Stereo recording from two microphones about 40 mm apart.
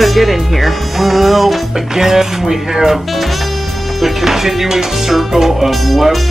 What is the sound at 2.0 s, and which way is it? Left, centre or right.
Speech, centre.